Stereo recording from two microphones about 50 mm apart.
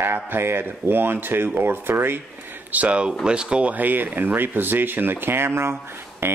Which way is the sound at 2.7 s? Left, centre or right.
Right.